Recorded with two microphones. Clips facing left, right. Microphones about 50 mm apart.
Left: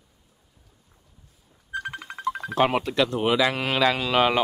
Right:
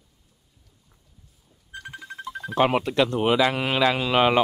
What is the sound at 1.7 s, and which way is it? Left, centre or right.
Music, left.